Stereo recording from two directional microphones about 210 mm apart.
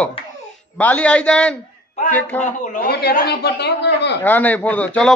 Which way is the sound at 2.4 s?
35° left (ahead or behind).